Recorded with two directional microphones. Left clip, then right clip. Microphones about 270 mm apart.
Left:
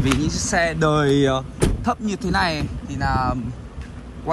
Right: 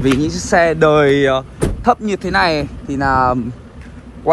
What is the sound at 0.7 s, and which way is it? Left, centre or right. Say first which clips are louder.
Speech: right 7 dB; centre.